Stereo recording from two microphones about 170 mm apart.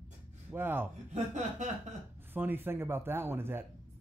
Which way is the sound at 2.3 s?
10° right (ahead or behind).